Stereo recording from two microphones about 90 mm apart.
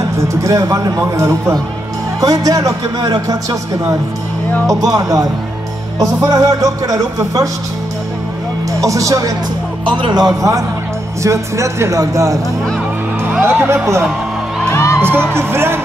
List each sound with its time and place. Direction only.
0.3 s a man's voice: 35° right (ahead or behind)
8.8 s a man's voice: 35° right (ahead or behind)
13.4 s speech: 25° right (ahead or behind)
14.7 s music: 30° left (ahead or behind)
15.0 s music: 25° right (ahead or behind)
15.3 s speech: 25° right (ahead or behind)